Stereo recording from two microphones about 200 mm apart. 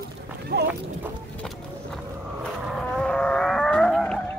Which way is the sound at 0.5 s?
55° right (ahead or behind).